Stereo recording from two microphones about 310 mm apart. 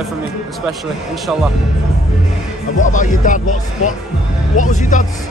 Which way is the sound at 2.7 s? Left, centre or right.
Left.